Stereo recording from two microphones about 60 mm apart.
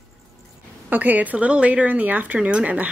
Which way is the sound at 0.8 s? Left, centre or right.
Right.